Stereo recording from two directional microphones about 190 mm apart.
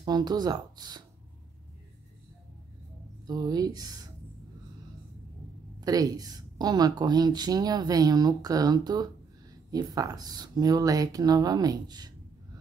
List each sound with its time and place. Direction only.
0.0 s a woman's voice: 20° right (ahead or behind)
3.3 s a woman's voice: 20° right (ahead or behind)
5.8 s a woman's voice: 20° right (ahead or behind)